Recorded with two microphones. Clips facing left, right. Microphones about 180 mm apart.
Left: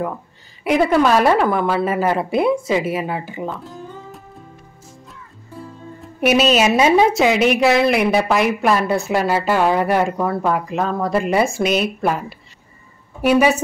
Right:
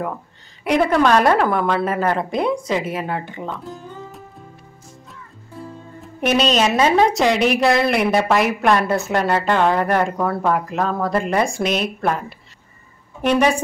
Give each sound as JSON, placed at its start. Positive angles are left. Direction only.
{"t": 0.7, "sound": "a woman's voice", "side_deg": 5}
{"t": 5.9, "sound": "a woman's voice", "side_deg": 5}